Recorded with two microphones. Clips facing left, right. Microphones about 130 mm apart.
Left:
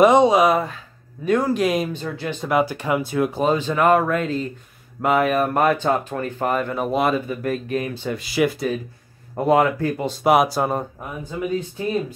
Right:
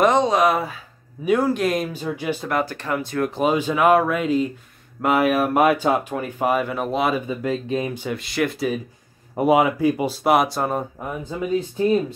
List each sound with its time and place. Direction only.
0.0 s speech: 10° left (ahead or behind)
2.0 s speech: 10° right (ahead or behind)
2.4 s speech: 10° left (ahead or behind)
3.3 s speech: 10° right (ahead or behind)
7.2 s speech: 20° right (ahead or behind)
8.1 s speech: 5° left (ahead or behind)
9.3 s speech: 10° right (ahead or behind)
10.2 s speech: centre (ahead or behind)